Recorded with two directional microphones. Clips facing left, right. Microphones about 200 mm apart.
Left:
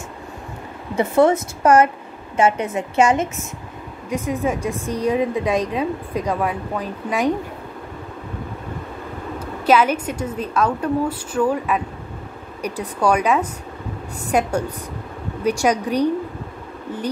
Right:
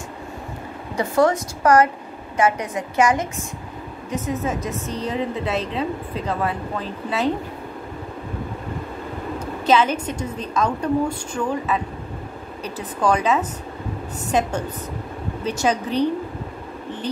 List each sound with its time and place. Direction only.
0.9 s a woman's voice: 25° left (ahead or behind)
4.1 s a woman's voice: 10° left (ahead or behind)
9.7 s a woman's voice: 10° left (ahead or behind)
15.4 s a woman's voice: 10° left (ahead or behind)